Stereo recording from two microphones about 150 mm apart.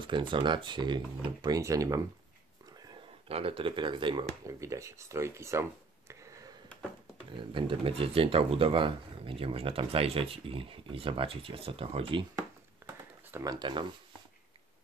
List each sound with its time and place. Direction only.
0.0 s speech: 35° right (ahead or behind)
3.3 s speech: 40° right (ahead or behind)
4.5 s speech: 20° right (ahead or behind)
7.3 s speech: 35° right (ahead or behind)
12.8 s a sound: 20° right (ahead or behind)